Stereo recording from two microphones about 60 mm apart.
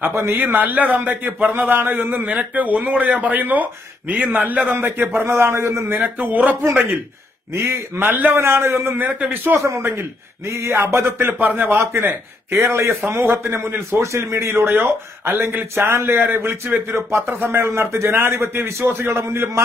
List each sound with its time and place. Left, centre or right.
0.0 s a man's voice: right
5.9 s a man's voice: right
7.5 s a man's voice: right
8.0 s a man's voice: right
8.4 s a man's voice: right
8.9 s a man's voice: right
9.6 s a man's voice: right
11.3 s a man's voice: right
11.8 s a man's voice: right
13.1 s a man's voice: right
13.4 s a man's voice: right